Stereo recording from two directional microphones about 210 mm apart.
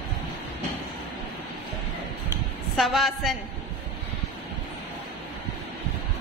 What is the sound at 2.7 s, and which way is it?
Speech, centre (ahead or behind).